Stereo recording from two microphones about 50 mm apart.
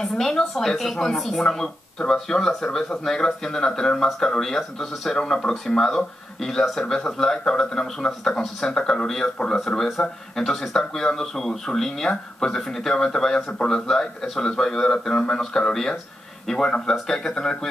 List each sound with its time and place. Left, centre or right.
0.0 s speech: centre
9.8 s speech: centre